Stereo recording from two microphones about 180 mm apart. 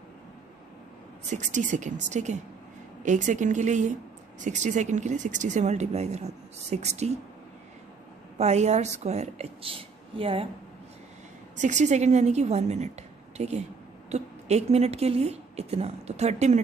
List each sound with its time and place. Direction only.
1.3 s a woman's voice: 40° right (ahead or behind)
8.4 s speech: 40° right (ahead or behind)
11.5 s speech: 40° right (ahead or behind)